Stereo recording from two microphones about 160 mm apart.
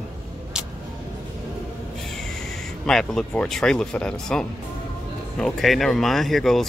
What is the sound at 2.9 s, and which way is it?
Speech, 5° left (ahead or behind).